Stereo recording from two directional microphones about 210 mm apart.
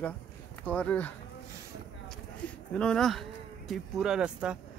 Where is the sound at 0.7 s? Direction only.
10° left (ahead or behind).